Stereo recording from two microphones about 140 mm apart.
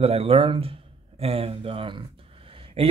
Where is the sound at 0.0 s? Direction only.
45° right (ahead or behind).